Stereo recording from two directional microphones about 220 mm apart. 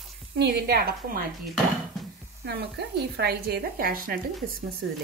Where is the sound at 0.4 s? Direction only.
45° right (ahead or behind).